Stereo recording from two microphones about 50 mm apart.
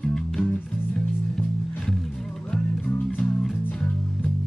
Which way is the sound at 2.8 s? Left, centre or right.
Left.